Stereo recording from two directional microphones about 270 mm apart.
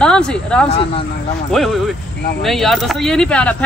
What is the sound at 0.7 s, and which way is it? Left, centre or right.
Speech, left.